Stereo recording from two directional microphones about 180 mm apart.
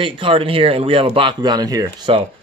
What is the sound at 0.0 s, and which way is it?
Speech, 30° right (ahead or behind).